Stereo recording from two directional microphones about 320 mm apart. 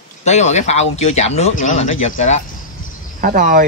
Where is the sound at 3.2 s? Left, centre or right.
Right.